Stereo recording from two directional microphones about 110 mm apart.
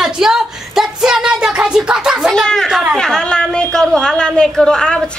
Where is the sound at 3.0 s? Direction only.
5° left (ahead or behind).